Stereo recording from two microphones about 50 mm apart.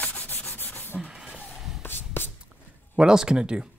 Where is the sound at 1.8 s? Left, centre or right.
Left.